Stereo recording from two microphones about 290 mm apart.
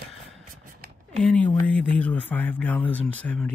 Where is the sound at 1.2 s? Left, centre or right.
Centre.